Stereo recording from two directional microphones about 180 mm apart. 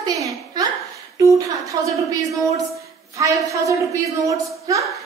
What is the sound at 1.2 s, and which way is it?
A woman's voice, 15° right (ahead or behind).